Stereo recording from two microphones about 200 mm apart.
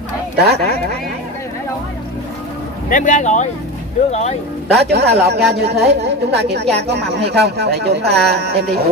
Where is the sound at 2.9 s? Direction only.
40° left (ahead or behind).